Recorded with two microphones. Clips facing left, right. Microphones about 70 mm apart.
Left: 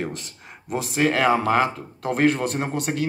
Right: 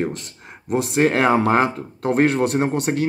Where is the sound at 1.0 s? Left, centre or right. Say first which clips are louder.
Right 2 dB; right.